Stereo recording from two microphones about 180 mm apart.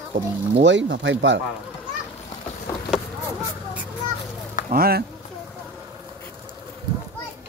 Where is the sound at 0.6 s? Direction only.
85° right.